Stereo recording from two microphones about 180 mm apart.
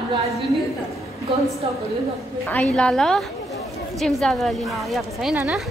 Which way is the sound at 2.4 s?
5° left (ahead or behind).